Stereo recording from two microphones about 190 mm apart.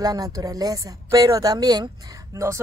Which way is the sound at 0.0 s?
20° right (ahead or behind).